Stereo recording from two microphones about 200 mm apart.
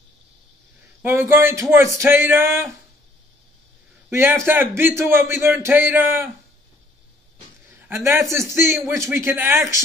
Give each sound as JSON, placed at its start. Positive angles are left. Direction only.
{"t": 1.0, "sound": "a man's voice", "side_deg": -10}
{"t": 4.1, "sound": "a man's voice", "side_deg": -10}
{"t": 7.9, "sound": "a man's voice", "side_deg": -15}